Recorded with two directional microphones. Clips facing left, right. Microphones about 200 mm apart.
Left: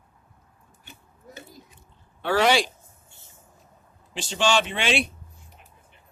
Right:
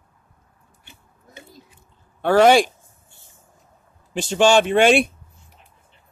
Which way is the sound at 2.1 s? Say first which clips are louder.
Right 7 dB; 50° right (ahead or behind).